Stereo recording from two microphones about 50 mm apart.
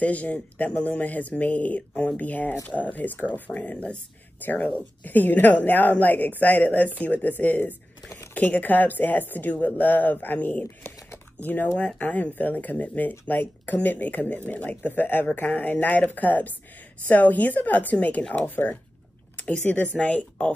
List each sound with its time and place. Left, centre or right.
0.0 s a woman's voice: left
3.7 s speech: left
4.5 s a woman's voice: left
10.6 s typing: left
11.3 s a woman's voice: left
19.5 s speech: left